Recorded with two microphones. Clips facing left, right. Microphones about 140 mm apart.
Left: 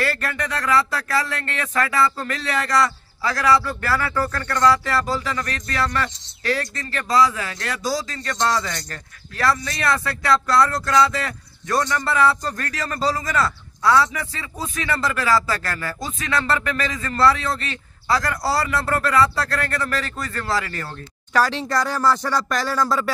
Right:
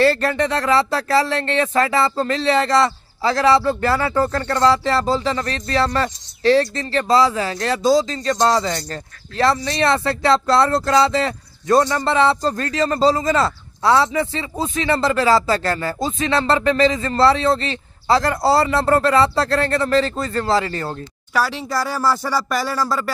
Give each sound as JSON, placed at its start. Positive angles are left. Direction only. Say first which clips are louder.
{"t": 0.0, "sound": "speech", "louder": "right 9 dB", "side_deg": -30}
{"t": 21.3, "sound": "speech", "louder": "left 1 dB", "side_deg": -10}